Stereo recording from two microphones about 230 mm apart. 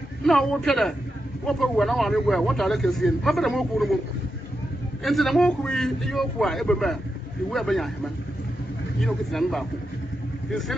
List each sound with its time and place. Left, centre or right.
0.2 s a man's voice: centre
5.0 s a man's voice: centre
9.0 s a man's voice: centre